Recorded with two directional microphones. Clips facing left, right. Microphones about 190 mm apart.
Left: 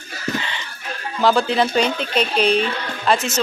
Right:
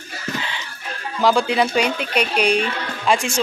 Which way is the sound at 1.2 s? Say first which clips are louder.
Even; 10° right (ahead or behind).